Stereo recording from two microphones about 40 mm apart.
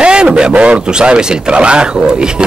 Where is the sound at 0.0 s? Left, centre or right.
Right.